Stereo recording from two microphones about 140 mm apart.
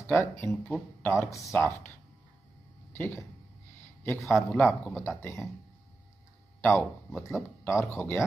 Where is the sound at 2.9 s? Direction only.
15° left (ahead or behind).